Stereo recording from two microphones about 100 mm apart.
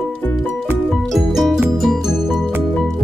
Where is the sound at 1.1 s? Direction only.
Centre (ahead or behind).